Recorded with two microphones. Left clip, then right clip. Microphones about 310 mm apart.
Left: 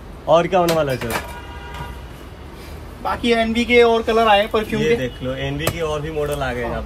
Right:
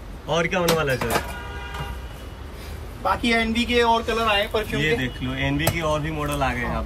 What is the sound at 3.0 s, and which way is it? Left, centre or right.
Speech, centre.